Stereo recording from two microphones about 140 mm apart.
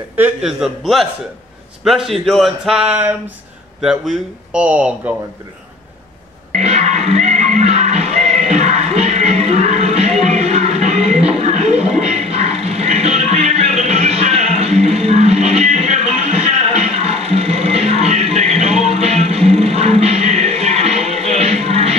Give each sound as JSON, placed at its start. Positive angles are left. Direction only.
{"t": 0.2, "sound": "speech", "side_deg": -5}
{"t": 6.6, "sound": "music", "side_deg": -50}